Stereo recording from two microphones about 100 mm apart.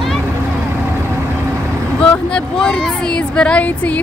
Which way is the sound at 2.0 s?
10° left (ahead or behind).